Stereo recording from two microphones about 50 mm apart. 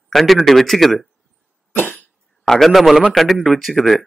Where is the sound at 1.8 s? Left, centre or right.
Left.